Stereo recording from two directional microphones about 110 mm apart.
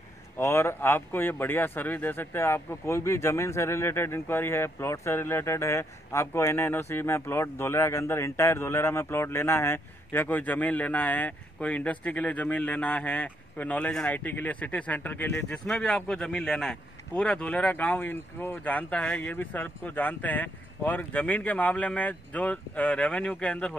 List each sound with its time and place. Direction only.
0.4 s speech: 25° left (ahead or behind)